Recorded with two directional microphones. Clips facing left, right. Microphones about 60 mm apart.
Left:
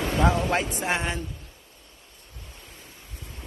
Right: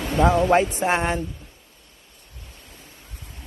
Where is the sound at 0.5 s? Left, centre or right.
Right.